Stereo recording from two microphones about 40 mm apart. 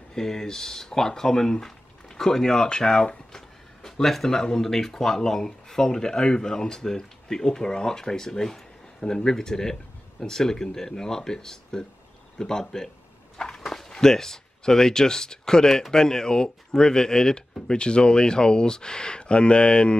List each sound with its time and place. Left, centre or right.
0.1 s speech: centre
13.6 s dog: centre
13.9 s speech: centre